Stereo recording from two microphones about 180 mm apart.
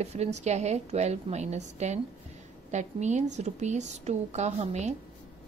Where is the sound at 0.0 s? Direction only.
40° right (ahead or behind).